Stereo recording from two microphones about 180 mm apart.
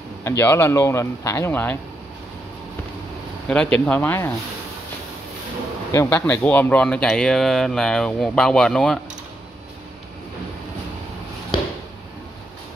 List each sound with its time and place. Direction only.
0.2 s speech: 15° left (ahead or behind)
3.4 s speech: 5° left (ahead or behind)
5.9 s speech: 15° left (ahead or behind)